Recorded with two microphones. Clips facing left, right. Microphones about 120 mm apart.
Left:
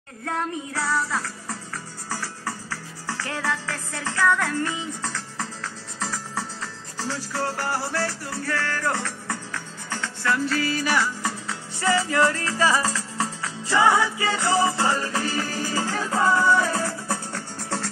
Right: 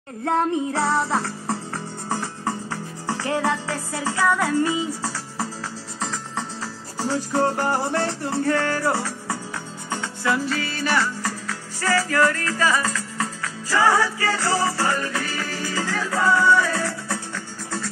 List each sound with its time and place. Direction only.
0.2 s music: 35° right (ahead or behind); by 5.5 s 10° right (ahead or behind)
5.9 s music: 5° left (ahead or behind)
7.0 s music: 15° right (ahead or behind)
10.3 s music: centre (ahead or behind); by 17.2 s 25° left (ahead or behind)
17.3 s music: 70° left (ahead or behind)